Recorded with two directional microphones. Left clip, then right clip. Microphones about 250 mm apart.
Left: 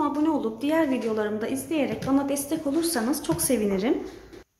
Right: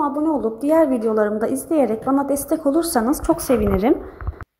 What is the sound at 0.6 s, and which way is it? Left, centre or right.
A woman's voice, right.